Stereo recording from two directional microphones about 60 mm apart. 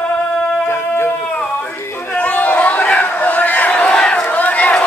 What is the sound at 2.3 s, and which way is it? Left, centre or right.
Crowd, left.